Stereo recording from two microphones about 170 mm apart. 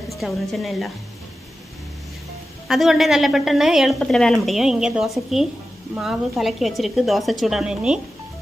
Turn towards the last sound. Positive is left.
turn(degrees=-5)  # may be behind; listen again after turning